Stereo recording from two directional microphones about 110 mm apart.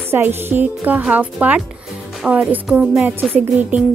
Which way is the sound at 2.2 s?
10° right (ahead or behind).